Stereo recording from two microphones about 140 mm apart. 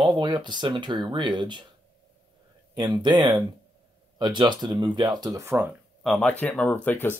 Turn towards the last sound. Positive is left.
turn(degrees=15)  # may be behind; listen again after turning